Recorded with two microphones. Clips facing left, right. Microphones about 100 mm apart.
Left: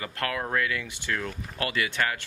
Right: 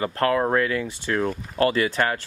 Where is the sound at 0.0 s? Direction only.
35° right (ahead or behind).